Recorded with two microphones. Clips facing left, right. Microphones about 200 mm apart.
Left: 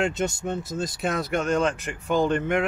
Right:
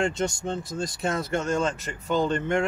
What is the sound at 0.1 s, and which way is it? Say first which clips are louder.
Speech: left 1 dB; 20° left (ahead or behind).